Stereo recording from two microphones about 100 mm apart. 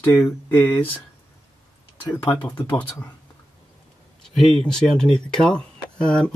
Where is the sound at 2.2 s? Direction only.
15° left (ahead or behind).